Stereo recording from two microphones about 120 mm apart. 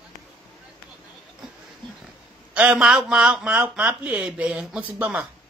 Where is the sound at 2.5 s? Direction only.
10° right (ahead or behind).